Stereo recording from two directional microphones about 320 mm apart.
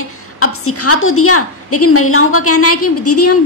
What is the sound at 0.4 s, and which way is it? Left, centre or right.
A woman's voice, left.